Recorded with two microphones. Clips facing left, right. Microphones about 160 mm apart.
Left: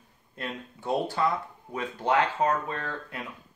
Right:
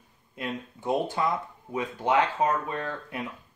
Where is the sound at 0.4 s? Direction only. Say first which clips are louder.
Right 3 dB; 15° right (ahead or behind).